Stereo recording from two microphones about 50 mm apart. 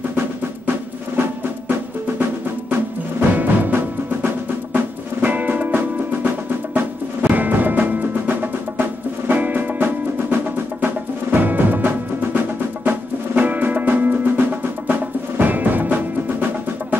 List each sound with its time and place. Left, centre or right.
3.2 s music: right